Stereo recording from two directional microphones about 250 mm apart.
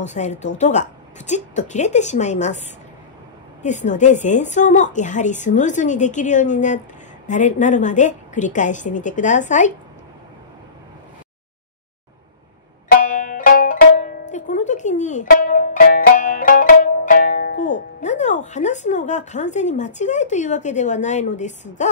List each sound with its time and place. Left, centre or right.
0.0 s a woman's voice: left
12.8 s music: left
18.0 s speech: left